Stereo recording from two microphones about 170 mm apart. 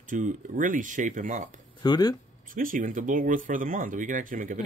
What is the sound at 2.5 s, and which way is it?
Speech, 55° right (ahead or behind).